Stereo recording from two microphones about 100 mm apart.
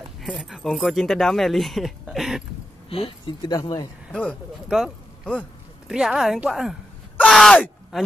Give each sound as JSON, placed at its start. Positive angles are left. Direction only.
{"t": 0.3, "sound": "speech", "side_deg": -5}
{"t": 2.9, "sound": "speech", "side_deg": 70}
{"t": 3.4, "sound": "speech", "side_deg": 45}
{"t": 4.1, "sound": "speech", "side_deg": 10}
{"t": 4.6, "sound": "a sound", "side_deg": -5}
{"t": 5.9, "sound": "speech", "side_deg": -5}